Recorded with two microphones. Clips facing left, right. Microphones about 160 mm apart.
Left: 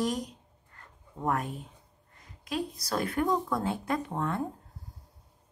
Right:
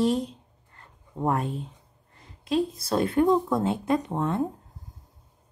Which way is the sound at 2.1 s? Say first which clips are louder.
Right 9 dB; 30° right (ahead or behind).